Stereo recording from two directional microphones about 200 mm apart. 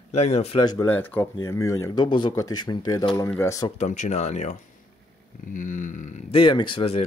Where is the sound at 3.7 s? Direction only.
35° left (ahead or behind).